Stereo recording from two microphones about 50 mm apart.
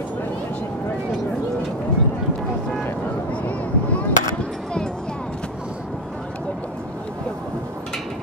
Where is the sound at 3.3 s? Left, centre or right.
Left.